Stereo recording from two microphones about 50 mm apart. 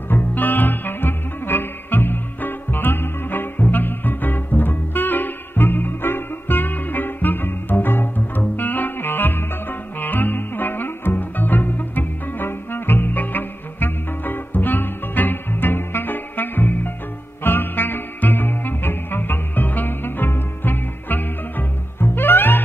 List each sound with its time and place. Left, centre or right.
0.2 s music: left